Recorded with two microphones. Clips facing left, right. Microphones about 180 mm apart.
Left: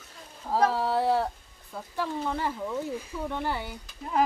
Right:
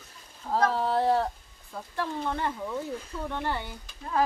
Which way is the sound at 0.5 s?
5° left (ahead or behind).